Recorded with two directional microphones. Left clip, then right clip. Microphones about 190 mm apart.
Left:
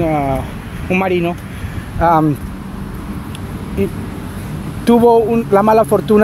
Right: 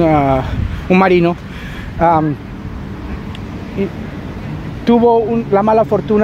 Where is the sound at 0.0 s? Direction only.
40° right (ahead or behind).